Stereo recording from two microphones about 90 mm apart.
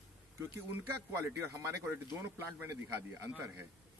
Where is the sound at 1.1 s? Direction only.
30° right (ahead or behind).